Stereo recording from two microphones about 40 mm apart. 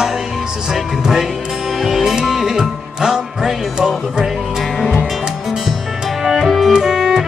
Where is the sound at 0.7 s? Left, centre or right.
Centre.